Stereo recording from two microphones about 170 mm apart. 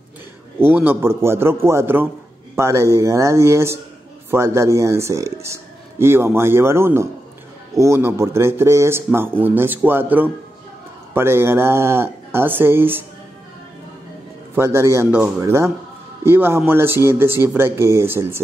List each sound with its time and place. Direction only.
0.6 s speech: 10° right (ahead or behind)
14.5 s speech: 15° right (ahead or behind)